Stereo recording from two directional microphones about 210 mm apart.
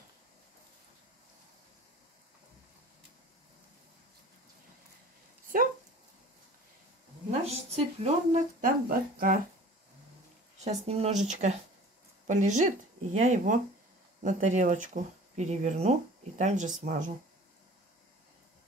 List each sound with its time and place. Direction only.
5.5 s speech: 40° right (ahead or behind)
7.2 s speech: 30° right (ahead or behind)
10.6 s speech: 30° right (ahead or behind)